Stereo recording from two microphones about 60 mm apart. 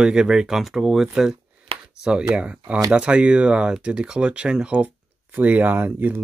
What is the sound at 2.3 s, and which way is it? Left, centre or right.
Speech, centre.